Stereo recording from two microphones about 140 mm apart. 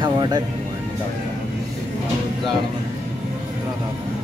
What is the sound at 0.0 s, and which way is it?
Music, 30° right (ahead or behind).